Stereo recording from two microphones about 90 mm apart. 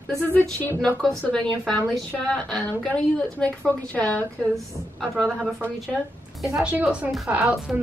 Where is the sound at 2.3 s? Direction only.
5° left (ahead or behind).